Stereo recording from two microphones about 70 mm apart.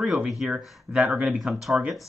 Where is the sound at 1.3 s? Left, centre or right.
Centre.